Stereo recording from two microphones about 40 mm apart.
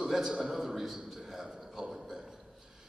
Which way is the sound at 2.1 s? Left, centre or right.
Centre.